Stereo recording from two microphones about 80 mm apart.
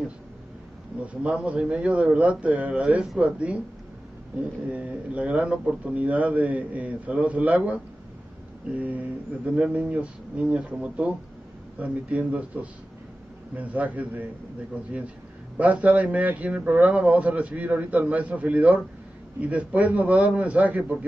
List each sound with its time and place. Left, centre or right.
1.0 s a man's voice: centre
4.6 s a man's voice: centre
15.5 s a man's voice: centre